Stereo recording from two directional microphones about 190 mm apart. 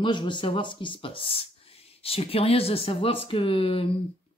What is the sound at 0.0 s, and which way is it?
Speech, 25° left (ahead or behind).